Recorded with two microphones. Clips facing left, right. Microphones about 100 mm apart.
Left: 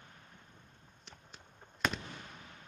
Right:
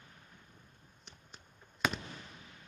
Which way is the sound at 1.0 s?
Centre (ahead or behind).